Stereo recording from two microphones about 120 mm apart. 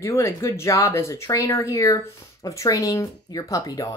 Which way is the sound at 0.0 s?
25° left (ahead or behind).